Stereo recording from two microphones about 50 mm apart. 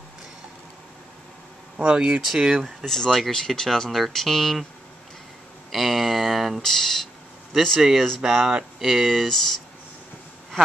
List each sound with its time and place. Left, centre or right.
1.8 s speech: right
2.2 s speech: centre
2.8 s speech: centre
5.7 s a sound: centre
6.6 s speech: centre
8.2 s speech: centre